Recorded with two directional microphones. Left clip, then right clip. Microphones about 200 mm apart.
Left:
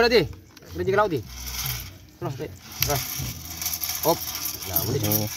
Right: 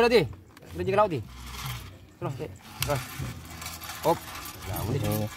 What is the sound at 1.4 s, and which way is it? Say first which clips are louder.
Ratchet: left 6 dB; 45° left (ahead or behind).